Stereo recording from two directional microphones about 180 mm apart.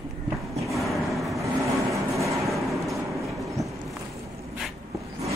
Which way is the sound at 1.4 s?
15° right (ahead or behind).